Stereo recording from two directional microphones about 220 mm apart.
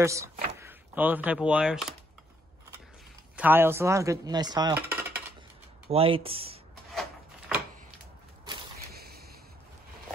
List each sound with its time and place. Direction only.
0.0 s speech: 15° right (ahead or behind)
3.3 s speech: 10° right (ahead or behind)
5.9 s speech: 25° right (ahead or behind)
6.9 s a sound: centre (ahead or behind)
8.7 s whip: 45° right (ahead or behind)